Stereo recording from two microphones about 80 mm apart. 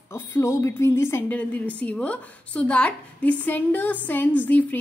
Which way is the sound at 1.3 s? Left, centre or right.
Centre.